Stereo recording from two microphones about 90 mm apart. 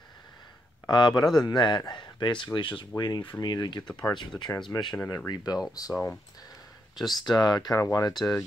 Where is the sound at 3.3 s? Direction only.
50° left (ahead or behind).